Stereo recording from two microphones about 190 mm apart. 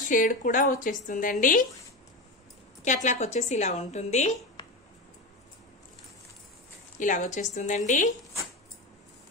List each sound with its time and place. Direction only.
0.1 s speech: 45° left (ahead or behind)
2.8 s a woman's voice: 40° left (ahead or behind)
4.6 s a sound: 25° left (ahead or behind)
7.0 s a woman's voice: 45° left (ahead or behind)